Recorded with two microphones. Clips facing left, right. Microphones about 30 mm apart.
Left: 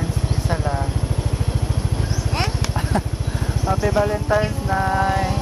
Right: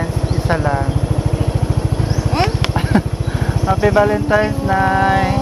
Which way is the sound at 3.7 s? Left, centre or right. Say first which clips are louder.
Right 6 dB; right.